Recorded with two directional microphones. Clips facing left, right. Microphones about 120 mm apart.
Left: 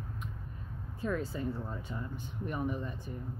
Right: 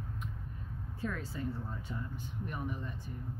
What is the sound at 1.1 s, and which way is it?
Speech, 20° left (ahead or behind).